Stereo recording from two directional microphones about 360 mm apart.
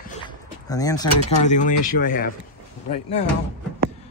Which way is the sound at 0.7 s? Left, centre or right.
Centre.